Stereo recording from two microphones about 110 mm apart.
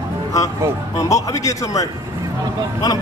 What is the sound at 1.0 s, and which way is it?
A man's voice, 30° left (ahead or behind).